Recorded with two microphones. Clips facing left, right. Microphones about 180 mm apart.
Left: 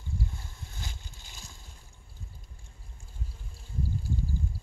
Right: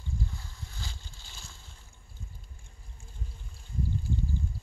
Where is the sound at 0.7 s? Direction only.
15° left (ahead or behind).